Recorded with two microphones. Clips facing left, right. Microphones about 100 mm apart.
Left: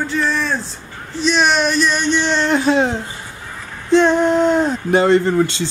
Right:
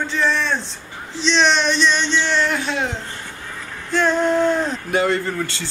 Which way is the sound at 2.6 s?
35° left (ahead or behind).